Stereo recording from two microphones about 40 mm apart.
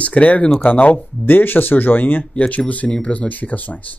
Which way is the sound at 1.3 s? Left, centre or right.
Left.